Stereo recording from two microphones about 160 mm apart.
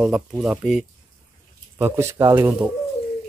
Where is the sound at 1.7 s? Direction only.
15° right (ahead or behind).